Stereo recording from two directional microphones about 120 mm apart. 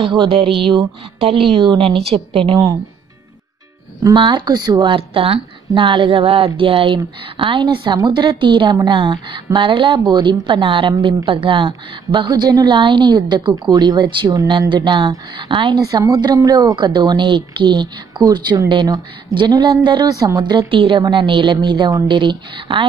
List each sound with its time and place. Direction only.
0.1 s speech: 40° right (ahead or behind)
4.0 s a woman's voice: 40° right (ahead or behind)
4.9 s a woman's voice: 50° right (ahead or behind)